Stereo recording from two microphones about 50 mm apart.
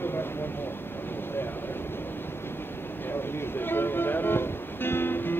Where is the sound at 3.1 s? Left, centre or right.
Left.